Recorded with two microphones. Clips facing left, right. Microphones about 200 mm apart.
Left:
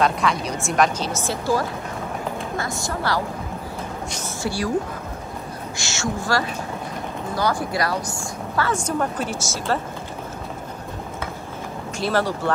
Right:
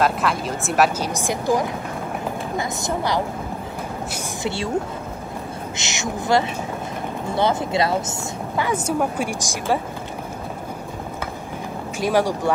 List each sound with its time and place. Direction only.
0.0 s a woman's voice: 5° right (ahead or behind); by 3.2 s 20° right (ahead or behind)
4.4 s a woman's voice: 25° right (ahead or behind)
5.8 s a woman's voice: 20° right (ahead or behind)
8.7 s speech: 10° right (ahead or behind)
12.0 s speech: 15° right (ahead or behind)